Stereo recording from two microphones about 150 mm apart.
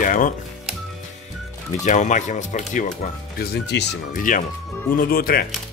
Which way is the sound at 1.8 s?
55° left (ahead or behind).